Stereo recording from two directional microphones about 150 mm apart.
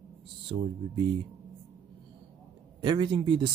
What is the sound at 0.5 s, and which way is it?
Speech, 30° right (ahead or behind).